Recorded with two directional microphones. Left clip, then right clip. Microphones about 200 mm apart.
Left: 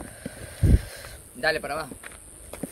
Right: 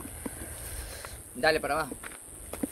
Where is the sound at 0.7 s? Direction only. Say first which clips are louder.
Left 10 dB; 40° left (ahead or behind).